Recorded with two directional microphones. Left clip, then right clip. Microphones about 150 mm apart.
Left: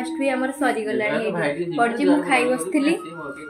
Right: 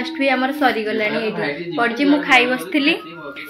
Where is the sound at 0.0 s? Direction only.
45° right (ahead or behind).